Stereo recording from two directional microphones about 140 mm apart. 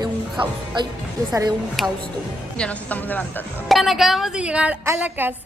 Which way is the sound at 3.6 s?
Centre (ahead or behind).